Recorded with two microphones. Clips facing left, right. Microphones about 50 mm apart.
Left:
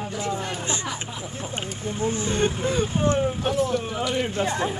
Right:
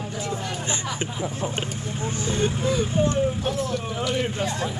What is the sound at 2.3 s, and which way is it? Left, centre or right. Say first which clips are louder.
Speech: right 2 dB; left.